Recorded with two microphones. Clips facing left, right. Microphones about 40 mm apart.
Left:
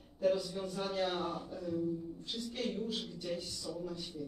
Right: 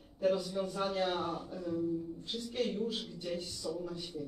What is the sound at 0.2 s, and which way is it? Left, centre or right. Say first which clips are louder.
A man's voice: right 1 dB; centre.